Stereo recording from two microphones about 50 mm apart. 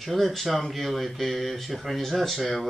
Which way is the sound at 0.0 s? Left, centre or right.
Centre.